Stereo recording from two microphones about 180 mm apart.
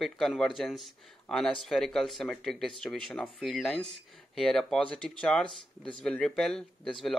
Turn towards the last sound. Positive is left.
turn(degrees=0)  # may be behind; listen again after turning